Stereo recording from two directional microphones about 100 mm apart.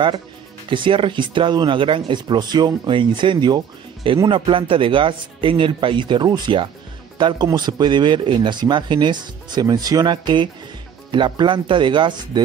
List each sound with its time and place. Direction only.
0.7 s speech: 60° right (ahead or behind)
2.2 s speech: 45° right (ahead or behind)